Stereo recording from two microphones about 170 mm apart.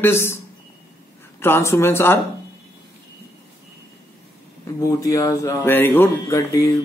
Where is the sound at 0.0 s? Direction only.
15° left (ahead or behind).